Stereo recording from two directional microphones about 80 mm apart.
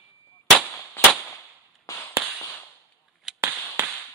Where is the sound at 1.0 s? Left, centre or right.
Left.